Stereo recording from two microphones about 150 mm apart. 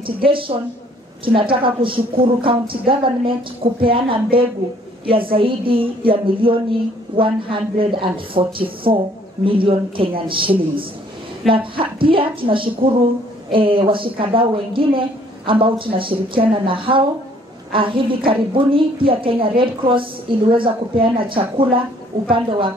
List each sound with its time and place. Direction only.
0.0 s a woman's voice: 35° right (ahead or behind)